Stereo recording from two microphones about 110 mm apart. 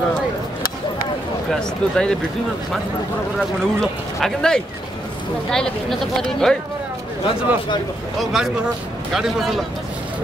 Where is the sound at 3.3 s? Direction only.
5° left (ahead or behind).